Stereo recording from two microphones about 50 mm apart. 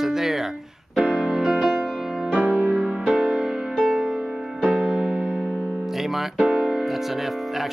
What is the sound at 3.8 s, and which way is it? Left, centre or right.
Music, centre.